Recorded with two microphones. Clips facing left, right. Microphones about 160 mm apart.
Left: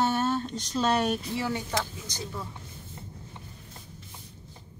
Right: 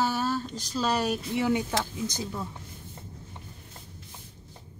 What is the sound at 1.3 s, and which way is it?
Speech, 15° right (ahead or behind).